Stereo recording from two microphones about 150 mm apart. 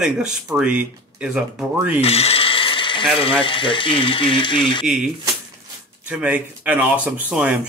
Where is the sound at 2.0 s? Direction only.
40° left (ahead or behind).